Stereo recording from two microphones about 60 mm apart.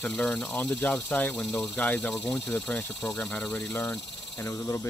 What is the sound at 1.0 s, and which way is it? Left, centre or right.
Speech, left.